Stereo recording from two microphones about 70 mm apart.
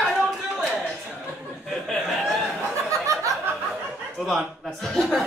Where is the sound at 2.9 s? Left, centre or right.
Right.